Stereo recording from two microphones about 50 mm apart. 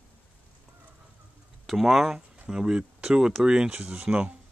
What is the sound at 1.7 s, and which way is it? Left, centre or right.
Speech, centre.